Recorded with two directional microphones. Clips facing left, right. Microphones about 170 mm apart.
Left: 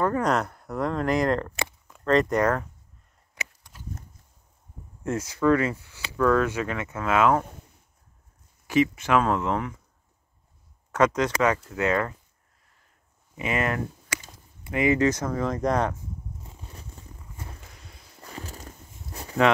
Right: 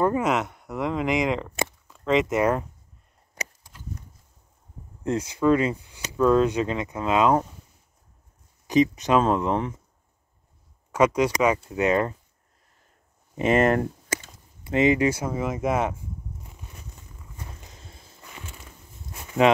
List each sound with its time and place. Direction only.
0.2 s speech: centre (ahead or behind)
5.0 s speech: 20° right (ahead or behind)
8.6 s speech: 20° right (ahead or behind)
10.9 s speech: 10° right (ahead or behind)
13.4 s speech: 40° right (ahead or behind)
14.7 s speech: 25° right (ahead or behind)
15.0 s speech: 10° right (ahead or behind)
16.4 s a sound: 30° left (ahead or behind)
17.6 s a sound: 25° right (ahead or behind)
18.2 s a sound: 35° left (ahead or behind)
19.4 s speech: 15° right (ahead or behind)